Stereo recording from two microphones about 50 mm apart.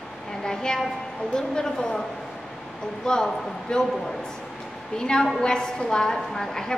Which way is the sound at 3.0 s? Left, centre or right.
Centre.